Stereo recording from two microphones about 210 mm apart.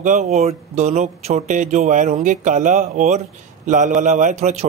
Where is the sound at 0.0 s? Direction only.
35° right (ahead or behind).